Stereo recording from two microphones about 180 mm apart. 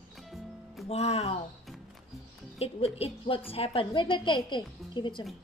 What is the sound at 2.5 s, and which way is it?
A woman's voice, 35° left (ahead or behind).